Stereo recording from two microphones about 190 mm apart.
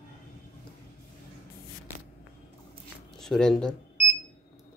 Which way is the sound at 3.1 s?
5° left (ahead or behind).